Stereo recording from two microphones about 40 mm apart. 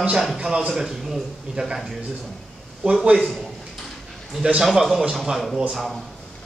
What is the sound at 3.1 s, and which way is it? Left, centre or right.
Speech, centre.